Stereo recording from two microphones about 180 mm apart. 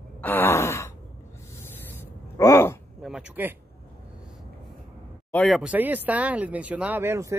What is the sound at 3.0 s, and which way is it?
Speech, 5° right (ahead or behind).